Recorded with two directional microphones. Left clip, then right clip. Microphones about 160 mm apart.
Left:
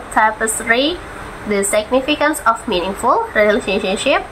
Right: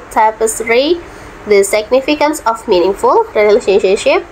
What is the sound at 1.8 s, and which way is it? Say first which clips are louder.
Speech: right 4 dB; 15° right (ahead or behind).